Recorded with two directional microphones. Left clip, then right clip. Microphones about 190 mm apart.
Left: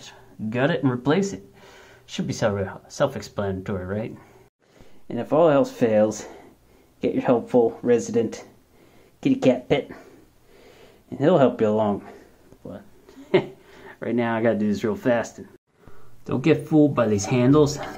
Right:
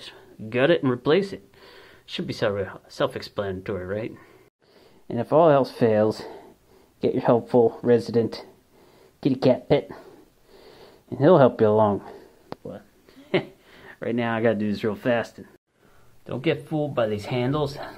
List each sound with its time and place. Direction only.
0.0 s speech: 30° right (ahead or behind)
13.3 s speech: 20° right (ahead or behind)